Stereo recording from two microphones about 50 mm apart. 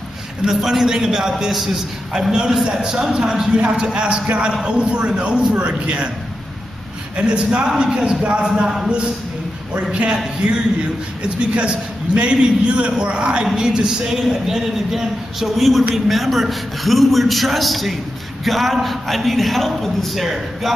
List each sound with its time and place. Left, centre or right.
0.6 s a man's voice: centre
7.2 s a man's voice: centre
8.2 s a man's voice: right
8.7 s a man's voice: centre
12.2 s a man's voice: centre